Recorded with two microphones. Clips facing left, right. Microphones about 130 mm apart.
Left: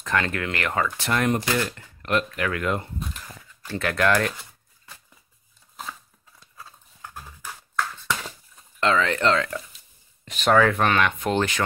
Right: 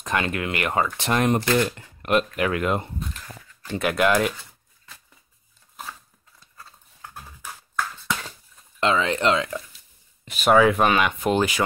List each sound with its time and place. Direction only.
0.0 s speech: 15° right (ahead or behind)
8.7 s speech: 15° right (ahead or behind)